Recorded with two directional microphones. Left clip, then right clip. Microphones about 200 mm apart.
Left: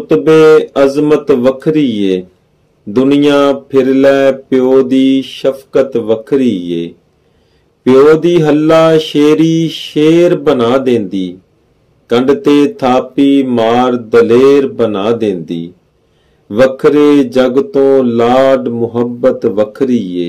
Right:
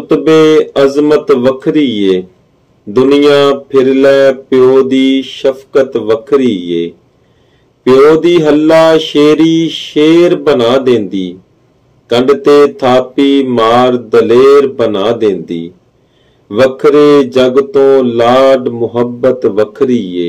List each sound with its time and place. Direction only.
0.2 s mantra: 45° left (ahead or behind)